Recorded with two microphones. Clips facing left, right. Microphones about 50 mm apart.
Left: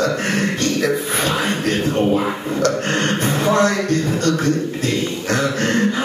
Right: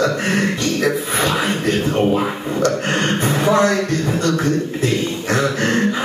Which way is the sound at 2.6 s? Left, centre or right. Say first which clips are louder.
Right 1 dB; right.